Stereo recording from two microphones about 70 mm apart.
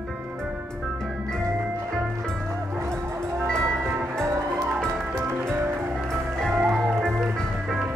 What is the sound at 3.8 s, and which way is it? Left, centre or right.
Music, right.